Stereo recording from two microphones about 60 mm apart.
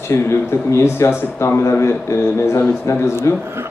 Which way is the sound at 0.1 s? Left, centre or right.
Left.